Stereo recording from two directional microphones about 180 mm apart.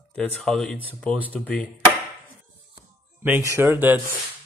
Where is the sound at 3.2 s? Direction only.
15° right (ahead or behind).